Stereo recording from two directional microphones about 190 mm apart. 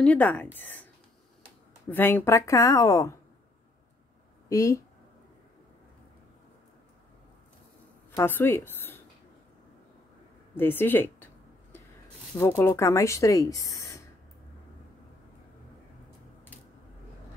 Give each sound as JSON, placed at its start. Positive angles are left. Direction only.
{"t": 0.0, "sound": "speech", "side_deg": 5}
{"t": 1.9, "sound": "speech", "side_deg": 10}
{"t": 4.5, "sound": "speech", "side_deg": 15}
{"t": 8.2, "sound": "a woman's voice", "side_deg": 10}
{"t": 10.5, "sound": "speech", "side_deg": 10}
{"t": 12.4, "sound": "speech", "side_deg": 15}